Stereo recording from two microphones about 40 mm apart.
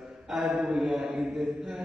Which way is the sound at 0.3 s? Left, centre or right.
Centre.